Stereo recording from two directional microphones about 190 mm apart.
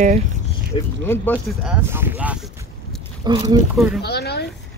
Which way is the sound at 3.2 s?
20° right (ahead or behind).